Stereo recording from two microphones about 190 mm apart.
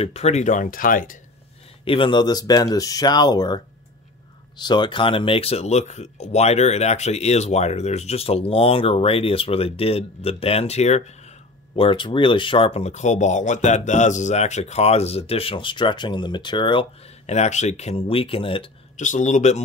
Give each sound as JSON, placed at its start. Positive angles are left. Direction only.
{"t": 0.0, "sound": "speech", "side_deg": 35}
{"t": 1.9, "sound": "speech", "side_deg": 25}
{"t": 18.9, "sound": "speech", "side_deg": 40}